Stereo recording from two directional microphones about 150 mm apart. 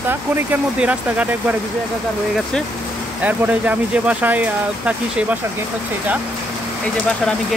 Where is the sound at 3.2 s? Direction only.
10° right (ahead or behind).